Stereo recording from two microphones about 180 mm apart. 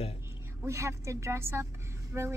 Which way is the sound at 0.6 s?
15° right (ahead or behind).